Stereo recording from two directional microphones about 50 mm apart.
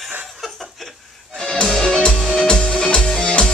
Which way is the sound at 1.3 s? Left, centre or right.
Centre.